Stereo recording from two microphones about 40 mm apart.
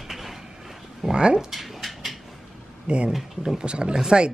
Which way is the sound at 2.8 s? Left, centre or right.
Right.